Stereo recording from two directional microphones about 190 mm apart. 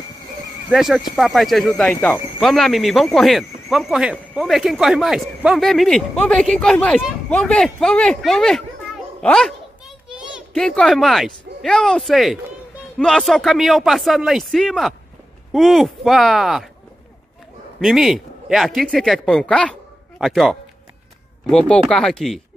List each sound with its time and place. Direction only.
0.7 s a child's voice: centre (ahead or behind)
17.7 s a man's voice: centre (ahead or behind)